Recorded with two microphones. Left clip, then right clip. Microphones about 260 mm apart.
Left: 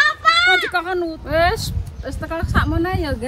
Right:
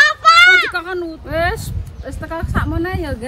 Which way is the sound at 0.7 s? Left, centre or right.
Centre.